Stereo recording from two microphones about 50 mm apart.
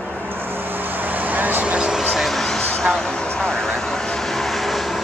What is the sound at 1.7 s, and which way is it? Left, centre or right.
Vehicle, centre.